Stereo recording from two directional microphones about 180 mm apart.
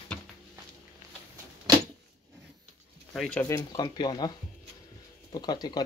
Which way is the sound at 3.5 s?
20° left (ahead or behind).